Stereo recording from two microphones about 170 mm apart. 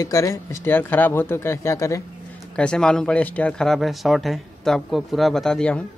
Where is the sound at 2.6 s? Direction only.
5° left (ahead or behind).